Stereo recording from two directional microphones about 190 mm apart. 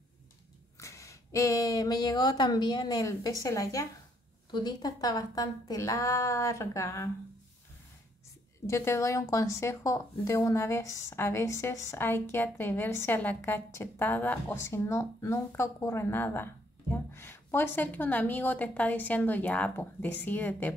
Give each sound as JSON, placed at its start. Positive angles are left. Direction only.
{"t": 0.7, "sound": "a woman's voice", "side_deg": 15}
{"t": 8.6, "sound": "speech", "side_deg": 15}